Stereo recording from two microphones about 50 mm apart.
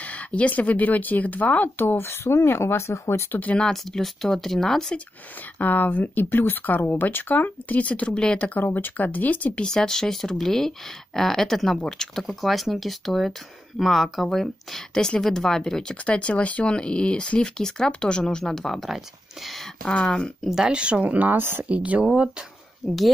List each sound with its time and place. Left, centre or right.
0.0 s speech: left
1.8 s speech: left
3.5 s speech: centre
5.6 s speech: left
8.7 s speech: left
9.6 s speech: centre
16.1 s speech: left; by 18.9 s centre
19.8 s speech: centre
20.6 s speech: right
21.4 s speech: right
21.6 s speech: right
22.8 s speech: centre